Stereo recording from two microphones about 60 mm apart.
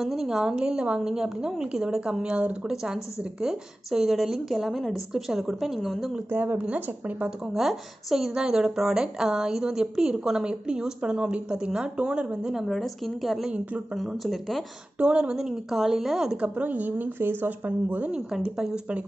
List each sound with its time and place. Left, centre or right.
0.0 s a woman's voice: centre
6.1 s a woman's voice: right
7.5 s a woman's voice: centre
12.6 s a woman's voice: centre
15.0 s a woman's voice: centre
16.3 s a woman's voice: right